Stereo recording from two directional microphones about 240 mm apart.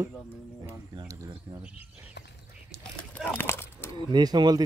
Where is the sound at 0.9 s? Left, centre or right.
Centre.